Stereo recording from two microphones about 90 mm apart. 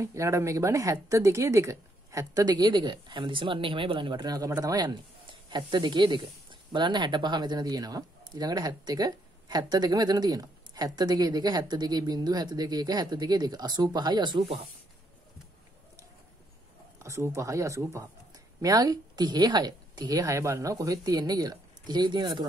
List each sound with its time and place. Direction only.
0.0 s speech: 35° right (ahead or behind)
2.4 s speech: 50° right (ahead or behind); by 4.2 s 70° right (ahead or behind)
4.2 s speech: 50° right (ahead or behind)
5.2 s speech: 60° right (ahead or behind)
17.0 s speech: 30° right (ahead or behind); by 22.5 s 60° right (ahead or behind)